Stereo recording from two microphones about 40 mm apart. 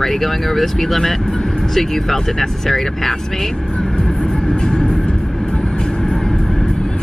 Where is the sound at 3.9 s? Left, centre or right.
Centre.